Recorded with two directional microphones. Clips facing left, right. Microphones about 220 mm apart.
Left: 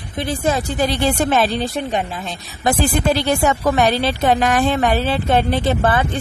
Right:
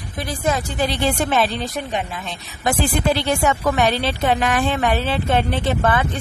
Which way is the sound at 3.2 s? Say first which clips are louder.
Left 2 dB; 35° left (ahead or behind).